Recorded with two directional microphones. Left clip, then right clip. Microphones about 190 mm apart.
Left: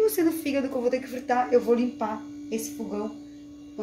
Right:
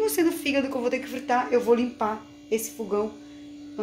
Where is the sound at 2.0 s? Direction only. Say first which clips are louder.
Right 2 dB; 35° right (ahead or behind).